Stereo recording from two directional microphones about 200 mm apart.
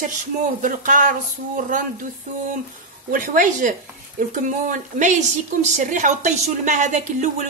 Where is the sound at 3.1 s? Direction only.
45° right (ahead or behind).